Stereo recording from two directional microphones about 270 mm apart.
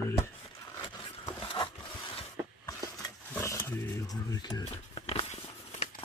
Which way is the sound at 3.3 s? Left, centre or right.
Centre.